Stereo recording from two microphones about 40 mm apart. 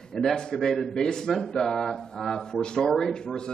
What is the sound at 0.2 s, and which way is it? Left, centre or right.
A man's voice, centre.